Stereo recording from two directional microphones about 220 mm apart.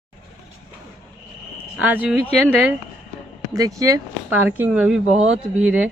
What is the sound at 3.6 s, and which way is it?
Speech, 15° right (ahead or behind).